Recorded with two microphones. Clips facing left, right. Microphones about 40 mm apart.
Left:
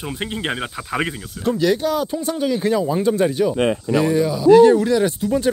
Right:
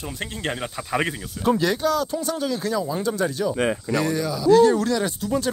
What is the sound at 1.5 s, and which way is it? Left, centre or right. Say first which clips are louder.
Speech: right 1 dB; centre.